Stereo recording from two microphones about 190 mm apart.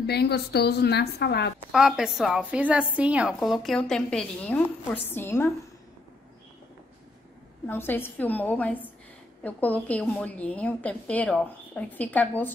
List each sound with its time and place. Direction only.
0.0 s a woman's voice: 60° left (ahead or behind)
1.7 s a woman's voice: centre (ahead or behind)
7.6 s a woman's voice: 10° left (ahead or behind)